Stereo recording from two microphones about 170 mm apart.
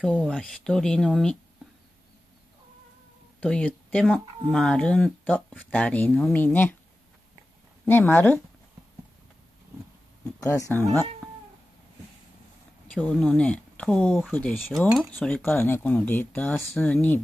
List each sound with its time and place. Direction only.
0.0 s speech: 5° left (ahead or behind)
3.3 s speech: 10° left (ahead or behind)
7.8 s speech: 10° left (ahead or behind)
10.4 s speech: 20° left (ahead or behind)
12.9 s speech: 10° left (ahead or behind)